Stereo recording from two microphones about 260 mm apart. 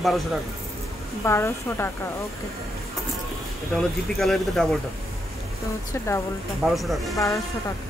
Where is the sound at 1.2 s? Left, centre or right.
Centre.